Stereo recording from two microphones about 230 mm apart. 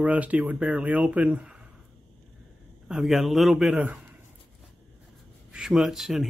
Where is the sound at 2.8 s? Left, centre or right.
Centre.